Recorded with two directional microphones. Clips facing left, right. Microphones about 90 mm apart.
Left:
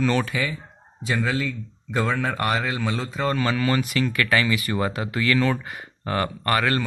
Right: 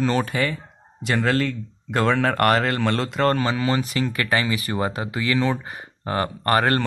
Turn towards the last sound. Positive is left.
turn(degrees=-40)  # may be behind; listen again after turning